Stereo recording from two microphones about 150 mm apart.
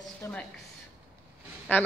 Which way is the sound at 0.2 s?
15° left (ahead or behind).